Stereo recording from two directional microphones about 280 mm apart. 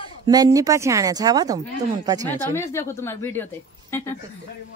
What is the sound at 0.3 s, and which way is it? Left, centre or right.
Speech, centre.